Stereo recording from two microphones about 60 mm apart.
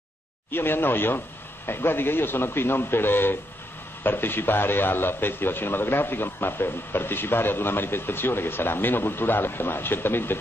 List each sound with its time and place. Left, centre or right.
0.5 s a man's voice: left